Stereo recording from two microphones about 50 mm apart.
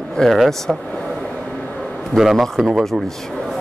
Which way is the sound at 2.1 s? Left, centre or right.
Centre.